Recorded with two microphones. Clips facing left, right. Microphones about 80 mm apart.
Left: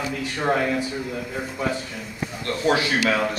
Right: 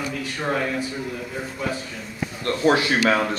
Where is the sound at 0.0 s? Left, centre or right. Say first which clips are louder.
Left 2 dB; centre.